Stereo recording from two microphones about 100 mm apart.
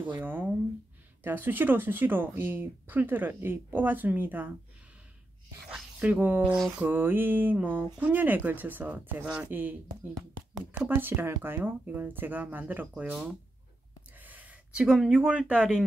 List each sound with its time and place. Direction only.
0.2 s speech: 20° right (ahead or behind)
5.9 s speech: 15° right (ahead or behind)
14.2 s a sound: 15° right (ahead or behind)
15.1 s speech: 10° right (ahead or behind)